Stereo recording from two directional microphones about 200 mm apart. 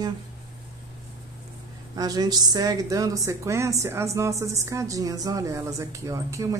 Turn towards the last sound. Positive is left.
turn(degrees=-15)  # may be behind; listen again after turning